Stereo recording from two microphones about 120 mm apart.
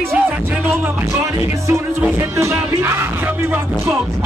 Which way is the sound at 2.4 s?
20° right (ahead or behind).